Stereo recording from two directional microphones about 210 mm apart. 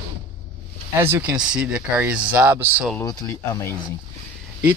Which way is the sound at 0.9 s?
10° right (ahead or behind).